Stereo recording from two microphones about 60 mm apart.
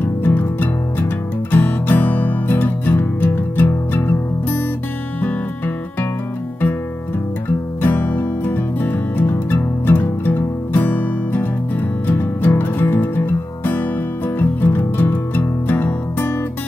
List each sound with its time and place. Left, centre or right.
0.0 s music: left
7.8 s music: left